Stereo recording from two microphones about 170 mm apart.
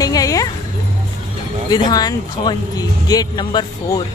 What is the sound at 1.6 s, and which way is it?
Speech, 25° left (ahead or behind).